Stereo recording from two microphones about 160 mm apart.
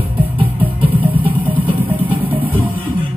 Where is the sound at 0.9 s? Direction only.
35° right (ahead or behind).